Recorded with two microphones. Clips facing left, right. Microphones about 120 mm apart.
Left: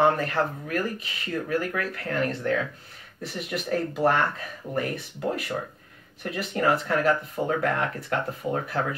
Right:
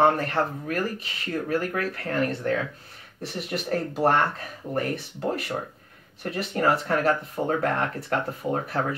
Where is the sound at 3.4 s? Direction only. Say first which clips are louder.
Even; 35° right (ahead or behind).